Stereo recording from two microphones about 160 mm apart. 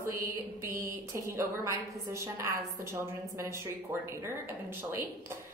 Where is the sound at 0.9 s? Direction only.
15° right (ahead or behind).